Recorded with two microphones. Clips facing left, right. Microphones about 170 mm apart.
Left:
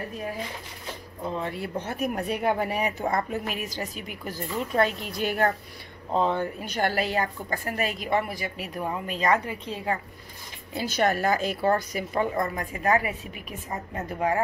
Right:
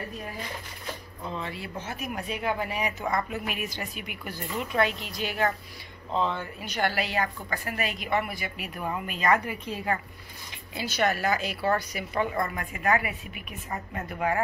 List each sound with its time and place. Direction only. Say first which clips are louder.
1.3 s speech: left 5 dB; 50° left (ahead or behind)
3.1 s a woman's voice: left 2 dB; 30° left (ahead or behind)
10.8 s a woman's voice: left 2 dB; 45° left (ahead or behind)